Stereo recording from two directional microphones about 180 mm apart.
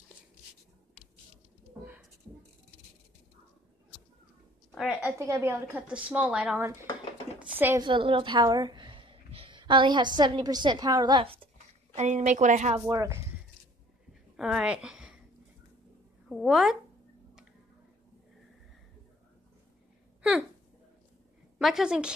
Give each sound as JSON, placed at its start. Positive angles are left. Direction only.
{"t": 4.7, "sound": "a woman's voice", "side_deg": -5}
{"t": 5.1, "sound": "a woman's voice", "side_deg": -15}
{"t": 7.8, "sound": "a woman's voice", "side_deg": -30}
{"t": 12.0, "sound": "a woman's voice", "side_deg": -40}
{"t": 12.8, "sound": "a woman's voice", "side_deg": -20}
{"t": 14.3, "sound": "a sound", "side_deg": -5}
{"t": 16.3, "sound": "speech", "side_deg": 0}
{"t": 20.2, "sound": "a sound", "side_deg": -5}
{"t": 21.5, "sound": "a woman's voice", "side_deg": 0}